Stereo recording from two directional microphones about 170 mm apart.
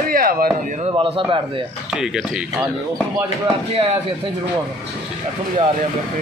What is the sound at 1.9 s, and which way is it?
Speech, 5° right (ahead or behind).